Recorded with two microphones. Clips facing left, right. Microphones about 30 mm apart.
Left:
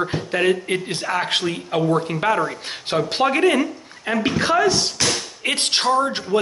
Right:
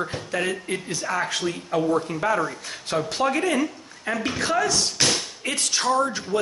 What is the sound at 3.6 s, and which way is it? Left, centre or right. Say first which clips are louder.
A woman's voice: left 1 dB; left.